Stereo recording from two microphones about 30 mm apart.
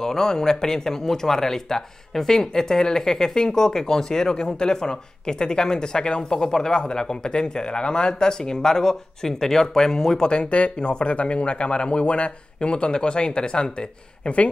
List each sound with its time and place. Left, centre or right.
0.0 s speech: centre; by 6.2 s left
6.2 s speech: centre
10.3 s speech: left